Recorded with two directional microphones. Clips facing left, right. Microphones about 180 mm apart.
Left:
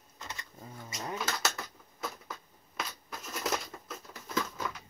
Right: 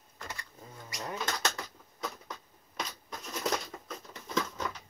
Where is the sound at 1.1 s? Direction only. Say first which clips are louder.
Even; 5° left (ahead or behind).